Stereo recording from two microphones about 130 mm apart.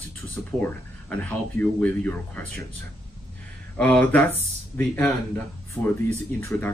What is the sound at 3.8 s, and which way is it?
Speech, 10° left (ahead or behind).